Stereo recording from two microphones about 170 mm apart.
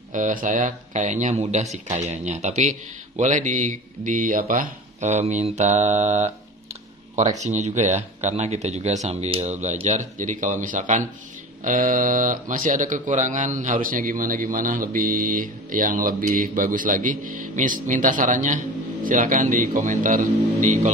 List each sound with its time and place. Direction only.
0.1 s speech: 50° right (ahead or behind)